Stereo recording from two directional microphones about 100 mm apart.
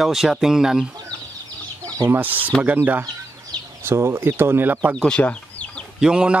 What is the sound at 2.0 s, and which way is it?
Speech, 20° right (ahead or behind).